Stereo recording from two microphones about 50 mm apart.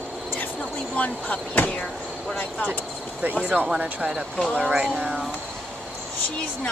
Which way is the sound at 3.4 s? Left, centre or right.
Right.